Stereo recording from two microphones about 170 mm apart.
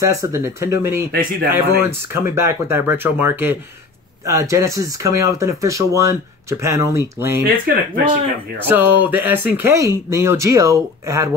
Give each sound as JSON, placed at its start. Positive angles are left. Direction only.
{"t": 0.0, "sound": "speech", "side_deg": -15}
{"t": 7.4, "sound": "speech", "side_deg": -55}
{"t": 8.5, "sound": "speech", "side_deg": -10}